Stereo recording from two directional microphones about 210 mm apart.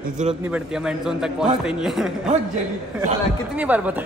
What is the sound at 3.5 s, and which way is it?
Speech, 5° right (ahead or behind).